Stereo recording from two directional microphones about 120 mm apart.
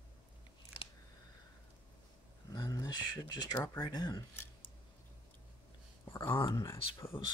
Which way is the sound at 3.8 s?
35° left (ahead or behind).